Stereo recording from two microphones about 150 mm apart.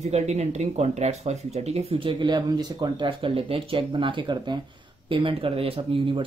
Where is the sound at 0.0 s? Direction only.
50° right (ahead or behind).